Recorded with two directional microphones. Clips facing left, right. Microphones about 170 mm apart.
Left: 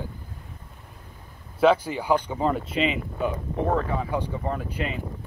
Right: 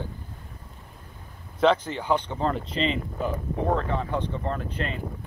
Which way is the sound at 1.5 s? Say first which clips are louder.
Left 2 dB; 10° left (ahead or behind).